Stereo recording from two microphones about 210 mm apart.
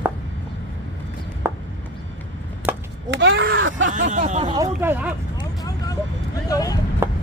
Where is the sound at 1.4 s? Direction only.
10° right (ahead or behind).